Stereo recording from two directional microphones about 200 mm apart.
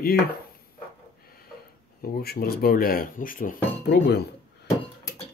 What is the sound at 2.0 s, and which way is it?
Speech, 50° left (ahead or behind).